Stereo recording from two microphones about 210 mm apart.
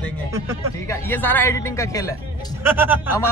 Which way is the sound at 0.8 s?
10° left (ahead or behind).